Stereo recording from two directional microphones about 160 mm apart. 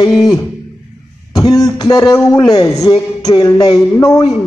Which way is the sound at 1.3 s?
25° left (ahead or behind).